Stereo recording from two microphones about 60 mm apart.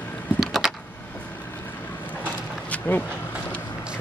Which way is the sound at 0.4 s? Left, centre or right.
Centre.